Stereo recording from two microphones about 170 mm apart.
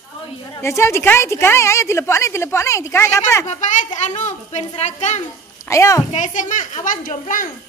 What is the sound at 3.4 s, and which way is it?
A woman's voice, 45° left (ahead or behind).